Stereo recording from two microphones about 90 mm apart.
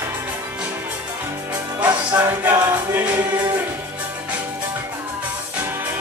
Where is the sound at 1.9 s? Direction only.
45° right (ahead or behind).